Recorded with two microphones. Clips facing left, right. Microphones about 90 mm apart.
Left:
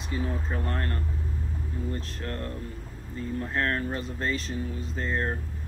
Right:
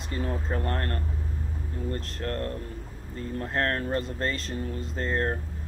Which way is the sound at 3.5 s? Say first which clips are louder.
Right 2 dB; 50° right (ahead or behind).